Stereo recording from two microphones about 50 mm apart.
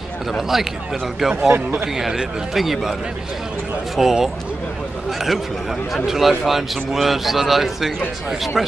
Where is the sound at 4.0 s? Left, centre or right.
Centre.